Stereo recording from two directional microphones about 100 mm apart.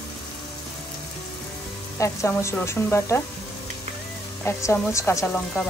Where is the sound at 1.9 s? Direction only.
30° left (ahead or behind).